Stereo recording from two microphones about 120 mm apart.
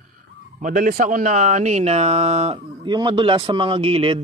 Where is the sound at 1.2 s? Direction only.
90° right; by 2.6 s 60° right (ahead or behind).